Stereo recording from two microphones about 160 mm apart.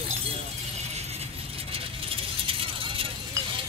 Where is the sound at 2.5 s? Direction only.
35° right (ahead or behind).